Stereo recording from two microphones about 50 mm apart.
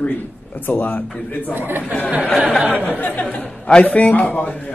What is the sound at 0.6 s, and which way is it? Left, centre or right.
Speech, left.